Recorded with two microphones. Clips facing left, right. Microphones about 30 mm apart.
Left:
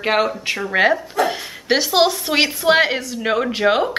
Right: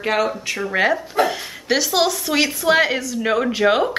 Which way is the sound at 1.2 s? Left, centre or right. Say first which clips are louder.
Even; centre.